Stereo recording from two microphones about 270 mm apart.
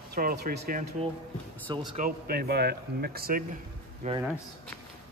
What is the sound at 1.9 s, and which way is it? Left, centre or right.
A man's voice, right.